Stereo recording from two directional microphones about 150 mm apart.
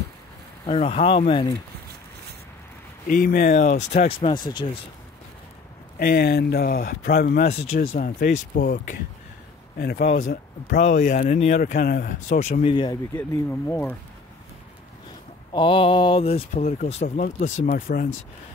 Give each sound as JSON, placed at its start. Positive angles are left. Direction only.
{"t": 0.7, "sound": "speech", "side_deg": 40}
{"t": 3.1, "sound": "speech", "side_deg": 75}
{"t": 4.3, "sound": "speech", "side_deg": 30}
{"t": 5.9, "sound": "speech", "side_deg": 90}
{"t": 7.4, "sound": "speech", "side_deg": 50}
{"t": 8.2, "sound": "speech", "side_deg": 70}
{"t": 9.8, "sound": "speech", "side_deg": 90}
{"t": 10.0, "sound": "speech", "side_deg": 60}
{"t": 10.8, "sound": "speech", "side_deg": 55}
{"t": 11.5, "sound": "speech", "side_deg": 75}
{"t": 12.3, "sound": "speech", "side_deg": 55}
{"t": 12.6, "sound": "speech", "side_deg": 30}
{"t": 13.1, "sound": "speech", "side_deg": 15}
{"t": 15.5, "sound": "speech", "side_deg": 35}